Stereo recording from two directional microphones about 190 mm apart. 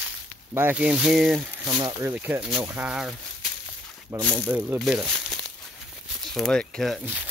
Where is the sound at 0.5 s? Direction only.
10° right (ahead or behind).